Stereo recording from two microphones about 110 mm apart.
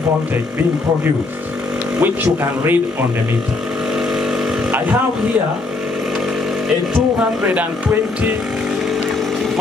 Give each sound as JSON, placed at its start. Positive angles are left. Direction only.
{"t": 2.0, "sound": "speech", "side_deg": -20}
{"t": 4.6, "sound": "speech", "side_deg": -15}
{"t": 7.4, "sound": "speech", "side_deg": -15}